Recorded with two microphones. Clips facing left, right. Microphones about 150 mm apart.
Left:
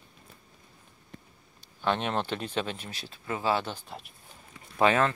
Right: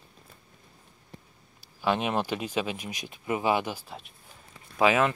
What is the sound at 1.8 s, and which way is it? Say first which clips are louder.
Speech: right 2 dB; 10° right (ahead or behind).